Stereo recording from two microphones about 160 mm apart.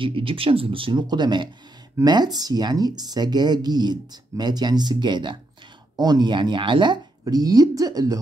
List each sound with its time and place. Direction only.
0.0 s speech: 35° right (ahead or behind)